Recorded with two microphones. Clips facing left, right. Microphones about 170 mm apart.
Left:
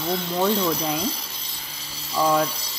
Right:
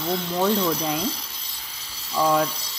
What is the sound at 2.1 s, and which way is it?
Speech, 5° left (ahead or behind).